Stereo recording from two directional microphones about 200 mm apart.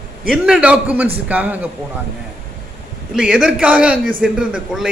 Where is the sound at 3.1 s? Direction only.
5° right (ahead or behind).